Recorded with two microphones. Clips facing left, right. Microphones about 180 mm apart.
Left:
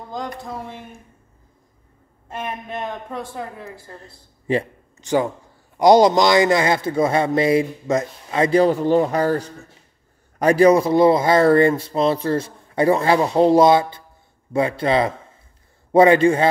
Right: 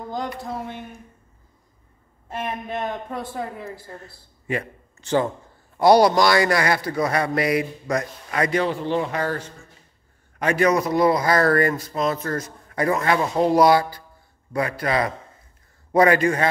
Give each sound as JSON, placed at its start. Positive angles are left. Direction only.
{"t": 0.4, "sound": "speech", "side_deg": -5}
{"t": 2.3, "sound": "speech", "side_deg": 0}
{"t": 4.0, "sound": "a man's voice", "side_deg": 30}
{"t": 4.9, "sound": "a man's voice", "side_deg": 15}